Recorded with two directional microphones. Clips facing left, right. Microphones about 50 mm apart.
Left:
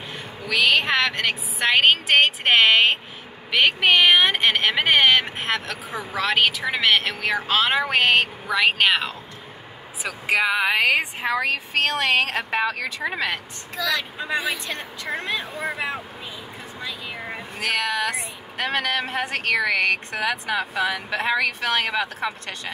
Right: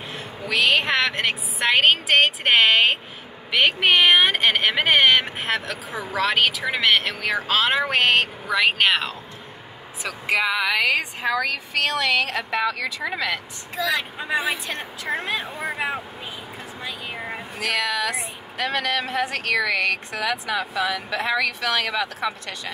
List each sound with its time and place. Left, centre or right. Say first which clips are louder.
0.1 s a woman's voice: even; centre; by 13.1 s left
13.8 s speech: even; centre
17.6 s speech: even; left